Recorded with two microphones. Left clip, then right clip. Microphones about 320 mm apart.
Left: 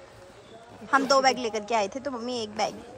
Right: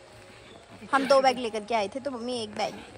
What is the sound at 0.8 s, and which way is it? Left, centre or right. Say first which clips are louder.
Speech: even; centre.